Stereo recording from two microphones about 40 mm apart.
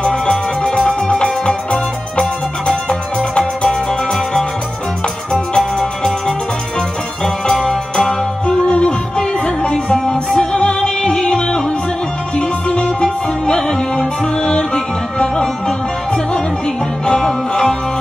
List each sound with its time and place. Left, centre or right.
0.0 s music: centre
1.0 s music: left
5.8 s music: centre
7.4 s music: centre
8.5 s music: left
17.2 s music: centre